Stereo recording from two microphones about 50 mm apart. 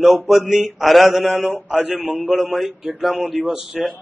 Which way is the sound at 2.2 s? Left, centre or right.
Centre.